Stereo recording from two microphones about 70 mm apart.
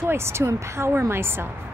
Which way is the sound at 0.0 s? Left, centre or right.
Right.